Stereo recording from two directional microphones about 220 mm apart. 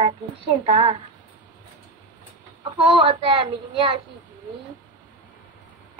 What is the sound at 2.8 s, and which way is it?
A woman's voice, 25° right (ahead or behind).